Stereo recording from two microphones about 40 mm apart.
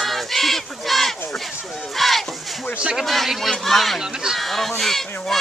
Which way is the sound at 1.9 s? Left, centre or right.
Centre.